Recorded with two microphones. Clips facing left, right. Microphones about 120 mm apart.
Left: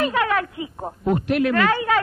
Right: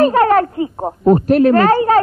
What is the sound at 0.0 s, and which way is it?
Speech, 40° right (ahead or behind).